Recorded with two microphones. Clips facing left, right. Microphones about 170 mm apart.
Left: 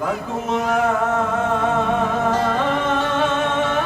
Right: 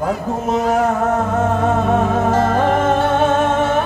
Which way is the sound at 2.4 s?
45° right (ahead or behind).